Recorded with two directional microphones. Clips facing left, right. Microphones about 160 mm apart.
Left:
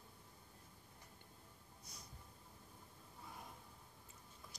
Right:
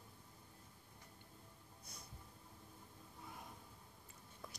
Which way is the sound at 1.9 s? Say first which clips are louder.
Right 1 dB; 55° right (ahead or behind).